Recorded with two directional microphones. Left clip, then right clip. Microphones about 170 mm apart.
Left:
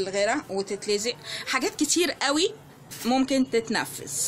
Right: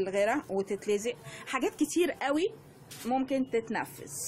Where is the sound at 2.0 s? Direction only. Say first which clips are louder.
Left 4 dB; 5° right (ahead or behind).